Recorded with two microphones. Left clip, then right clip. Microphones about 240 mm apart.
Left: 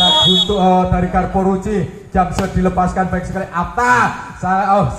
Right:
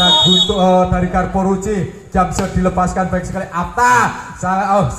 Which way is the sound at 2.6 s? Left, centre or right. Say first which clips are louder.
Even; right.